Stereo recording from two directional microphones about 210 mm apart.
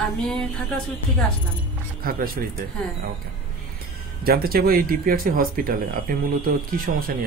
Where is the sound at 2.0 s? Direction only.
45° right (ahead or behind).